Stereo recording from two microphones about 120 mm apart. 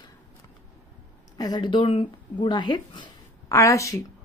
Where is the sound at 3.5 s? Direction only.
25° left (ahead or behind).